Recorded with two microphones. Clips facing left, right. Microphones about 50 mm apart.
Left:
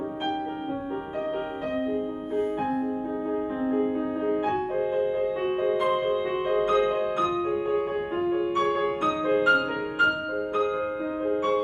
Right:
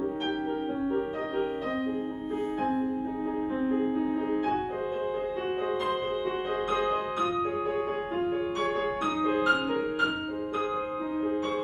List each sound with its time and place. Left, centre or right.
3.7 s music: centre
5.6 s music: centre